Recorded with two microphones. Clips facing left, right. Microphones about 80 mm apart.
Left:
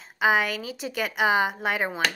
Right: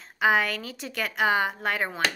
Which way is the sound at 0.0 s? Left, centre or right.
Centre.